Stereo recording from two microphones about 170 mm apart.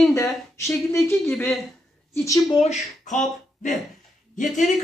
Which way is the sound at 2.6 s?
45° left (ahead or behind).